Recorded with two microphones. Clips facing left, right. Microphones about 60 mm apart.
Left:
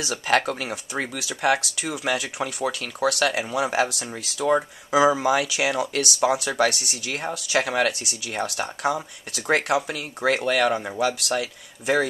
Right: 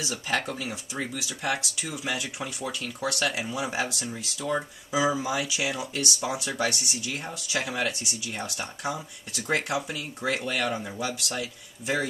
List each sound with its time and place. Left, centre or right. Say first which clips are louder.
0.0 s speech: left 7 dB; left